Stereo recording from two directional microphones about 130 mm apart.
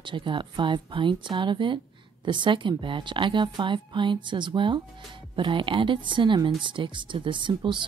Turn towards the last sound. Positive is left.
turn(degrees=-40)  # may be behind; listen again after turning